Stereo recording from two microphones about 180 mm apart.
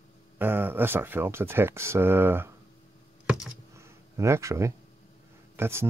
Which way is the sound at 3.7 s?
15° right (ahead or behind).